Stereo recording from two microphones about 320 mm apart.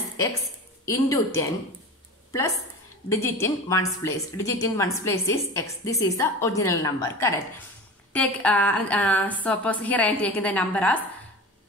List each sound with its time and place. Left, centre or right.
0.8 s a woman's voice: centre
3.1 s a woman's voice: centre